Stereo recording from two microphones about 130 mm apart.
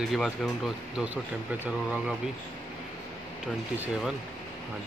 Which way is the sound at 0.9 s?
10° right (ahead or behind).